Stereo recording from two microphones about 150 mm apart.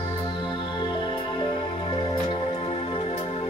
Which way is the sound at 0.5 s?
35° left (ahead or behind).